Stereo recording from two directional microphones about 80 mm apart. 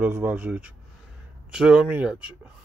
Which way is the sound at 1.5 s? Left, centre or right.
Centre.